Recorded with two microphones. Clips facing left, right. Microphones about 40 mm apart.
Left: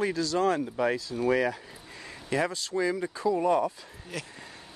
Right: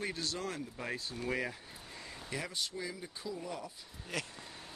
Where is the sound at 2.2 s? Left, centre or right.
Left.